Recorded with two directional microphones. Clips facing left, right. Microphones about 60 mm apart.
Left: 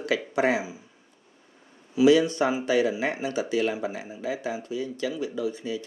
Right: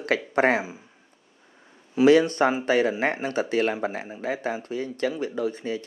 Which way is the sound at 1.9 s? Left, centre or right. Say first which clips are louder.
Right 2 dB; right.